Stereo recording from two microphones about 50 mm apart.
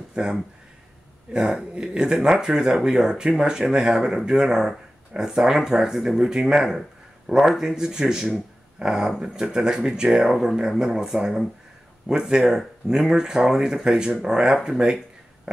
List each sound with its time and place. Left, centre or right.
0.1 s speech: centre